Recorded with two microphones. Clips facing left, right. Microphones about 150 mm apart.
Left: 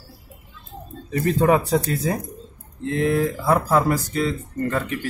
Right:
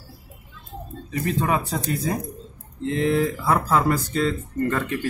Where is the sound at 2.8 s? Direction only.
20° right (ahead or behind).